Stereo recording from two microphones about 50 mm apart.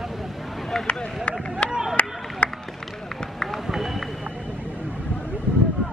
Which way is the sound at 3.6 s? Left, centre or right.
Centre.